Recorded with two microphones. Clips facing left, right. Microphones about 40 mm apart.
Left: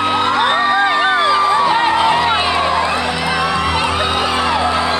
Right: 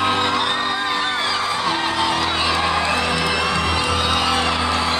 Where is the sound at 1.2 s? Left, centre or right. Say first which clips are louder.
Left 8 dB; centre.